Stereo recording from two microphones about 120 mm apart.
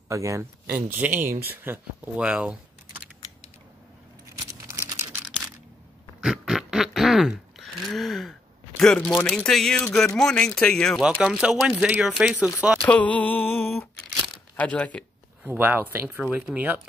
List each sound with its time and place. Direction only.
0.1 s speech: 25° right (ahead or behind); by 3.1 s 10° right (ahead or behind)
4.5 s a sound: 25° right (ahead or behind)
6.2 s a sound: 5° right (ahead or behind)
9.2 s speech: 5° left (ahead or behind)
11.0 s speech: 10° right (ahead or behind)
12.7 s speech: 10° left (ahead or behind)
13.7 s a sound: 5° left (ahead or behind)
14.6 s speech: 10° left (ahead or behind)
15.4 s speech: 15° right (ahead or behind)